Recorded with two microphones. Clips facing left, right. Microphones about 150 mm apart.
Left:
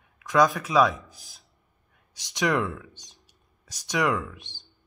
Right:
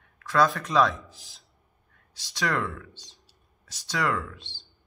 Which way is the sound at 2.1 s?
20° left (ahead or behind).